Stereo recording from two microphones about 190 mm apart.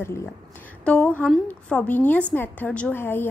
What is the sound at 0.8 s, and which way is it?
A woman's voice, 5° left (ahead or behind).